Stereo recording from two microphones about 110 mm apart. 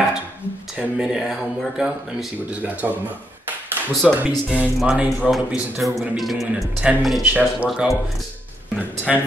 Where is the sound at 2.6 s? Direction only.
15° right (ahead or behind).